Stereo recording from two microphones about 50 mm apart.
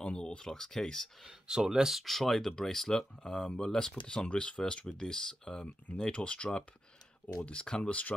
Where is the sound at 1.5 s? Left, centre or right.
Centre.